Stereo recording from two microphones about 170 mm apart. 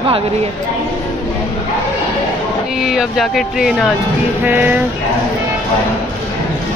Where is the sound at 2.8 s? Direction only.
Centre (ahead or behind).